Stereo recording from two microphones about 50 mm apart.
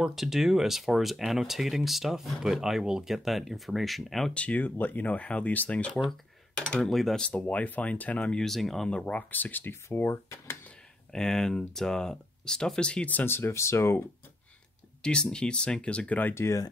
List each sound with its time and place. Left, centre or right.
0.0 s speech: centre
4.3 s speech: left
4.6 s speech: left; by 6.9 s centre
6.9 s speech: centre
7.2 s speech: left
8.3 s speech: centre
9.0 s speech: left
9.8 s speech: left
11.1 s speech: centre
13.2 s speech: left
13.5 s speech: left
15.0 s speech: centre
16.3 s speech: left